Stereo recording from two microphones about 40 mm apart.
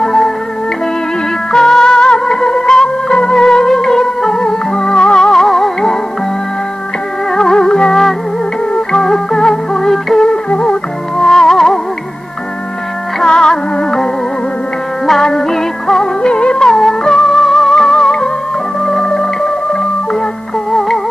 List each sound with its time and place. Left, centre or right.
0.0 s music: centre
1.5 s music: centre
7.3 s music: centre
13.2 s music: centre
15.0 s music: centre
16.2 s music: left